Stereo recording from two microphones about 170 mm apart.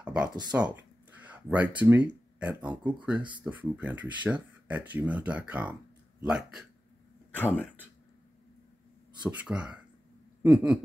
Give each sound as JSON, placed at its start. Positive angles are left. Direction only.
{"t": 0.0, "sound": "speech", "side_deg": -5}
{"t": 3.2, "sound": "speech", "side_deg": -25}
{"t": 3.4, "sound": "speech", "side_deg": -10}
{"t": 7.3, "sound": "speech", "side_deg": 10}
{"t": 9.2, "sound": "speech", "side_deg": -5}